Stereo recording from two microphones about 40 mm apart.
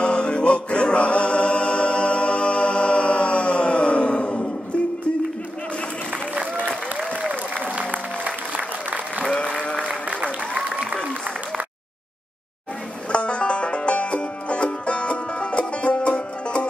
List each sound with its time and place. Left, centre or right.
0.0 s music: left
9.8 s applause: right
13.1 s music: left